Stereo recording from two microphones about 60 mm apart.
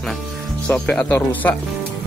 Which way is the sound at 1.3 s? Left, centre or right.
Left.